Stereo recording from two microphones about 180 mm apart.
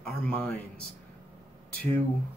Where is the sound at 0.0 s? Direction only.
5° left (ahead or behind).